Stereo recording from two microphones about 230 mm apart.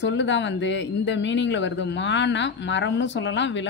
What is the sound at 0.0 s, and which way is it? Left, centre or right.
Speech, left.